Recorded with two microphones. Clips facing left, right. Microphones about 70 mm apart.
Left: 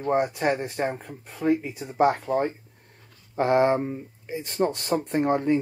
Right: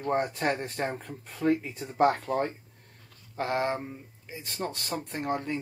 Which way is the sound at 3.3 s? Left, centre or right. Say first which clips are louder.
Left 8 dB; left.